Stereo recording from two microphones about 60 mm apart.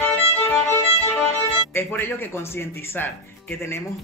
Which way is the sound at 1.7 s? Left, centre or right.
Left.